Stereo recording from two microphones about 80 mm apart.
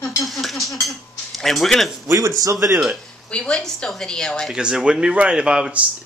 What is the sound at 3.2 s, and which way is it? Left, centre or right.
Speech, centre.